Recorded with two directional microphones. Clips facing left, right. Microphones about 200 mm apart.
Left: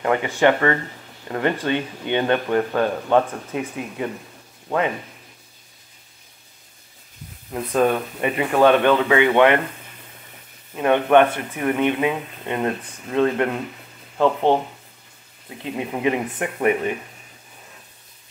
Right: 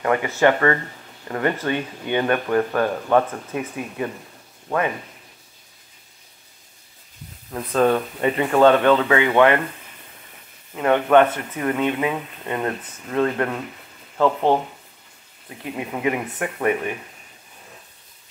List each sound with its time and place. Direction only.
0.0 s speech: 20° left (ahead or behind)
7.7 s speech: 15° left (ahead or behind)
10.7 s speech: 15° left (ahead or behind)
15.6 s speech: 20° left (ahead or behind)